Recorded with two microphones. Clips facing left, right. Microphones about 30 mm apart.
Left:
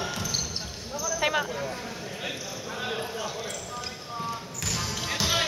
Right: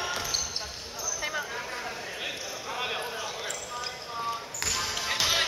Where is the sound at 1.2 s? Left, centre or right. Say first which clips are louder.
Left 7 dB; left.